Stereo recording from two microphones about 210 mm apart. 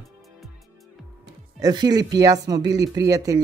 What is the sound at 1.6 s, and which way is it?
Speech, 20° right (ahead or behind).